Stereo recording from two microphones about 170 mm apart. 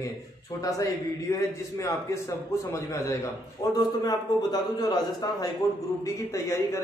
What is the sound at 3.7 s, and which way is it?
A man's voice, 25° left (ahead or behind).